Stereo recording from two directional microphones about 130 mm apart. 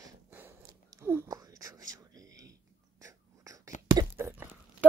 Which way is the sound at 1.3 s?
30° right (ahead or behind).